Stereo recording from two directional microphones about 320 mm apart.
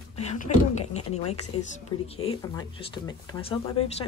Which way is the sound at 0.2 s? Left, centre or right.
Left.